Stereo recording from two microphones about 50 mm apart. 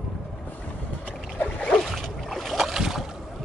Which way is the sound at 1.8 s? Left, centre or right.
Centre.